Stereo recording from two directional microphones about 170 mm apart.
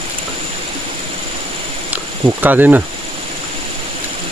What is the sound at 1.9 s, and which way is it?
Speech, 10° right (ahead or behind).